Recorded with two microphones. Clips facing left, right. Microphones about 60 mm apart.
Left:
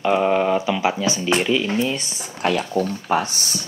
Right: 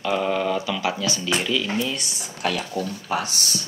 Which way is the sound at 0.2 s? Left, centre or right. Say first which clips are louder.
Left 5 dB; left.